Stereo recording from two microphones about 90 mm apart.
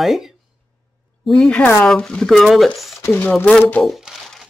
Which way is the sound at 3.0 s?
25° left (ahead or behind).